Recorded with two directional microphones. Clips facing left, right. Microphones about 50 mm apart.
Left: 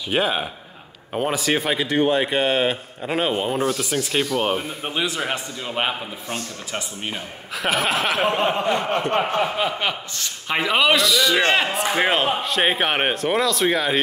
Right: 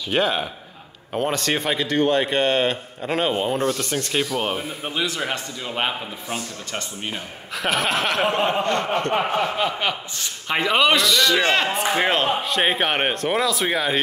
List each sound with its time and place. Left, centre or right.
0.1 s a man's voice: centre
4.9 s a man's voice: left
5.2 s a man's voice: centre
9.1 s a man's voice: centre